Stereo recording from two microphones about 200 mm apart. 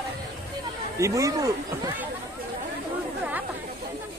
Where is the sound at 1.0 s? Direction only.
15° right (ahead or behind).